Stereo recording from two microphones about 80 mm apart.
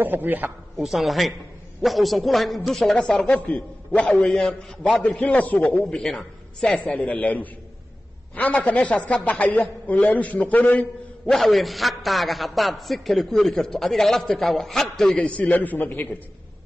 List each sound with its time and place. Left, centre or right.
0.0 s a man's voice: right
0.7 s a man's voice: centre
5.9 s a man's voice: centre
11.3 s a man's voice: centre
15.1 s a man's voice: centre